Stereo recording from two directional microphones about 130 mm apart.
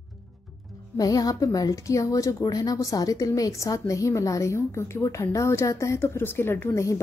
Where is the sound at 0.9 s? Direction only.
30° left (ahead or behind).